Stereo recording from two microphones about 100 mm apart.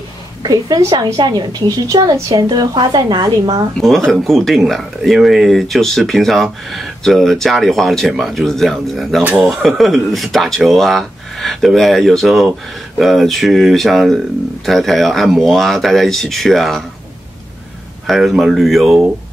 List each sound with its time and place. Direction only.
0.4 s a woman's voice: 40° right (ahead or behind)
3.8 s speech: centre (ahead or behind)
18.0 s speech: centre (ahead or behind)